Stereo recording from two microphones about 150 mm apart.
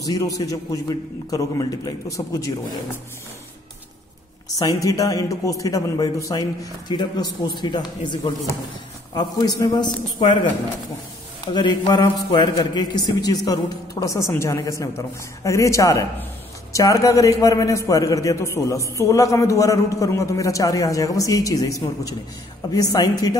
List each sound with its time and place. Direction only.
0.0 s a man's voice: 25° left (ahead or behind)
4.6 s a man's voice: 25° left (ahead or behind)
11.4 s a man's voice: 30° left (ahead or behind)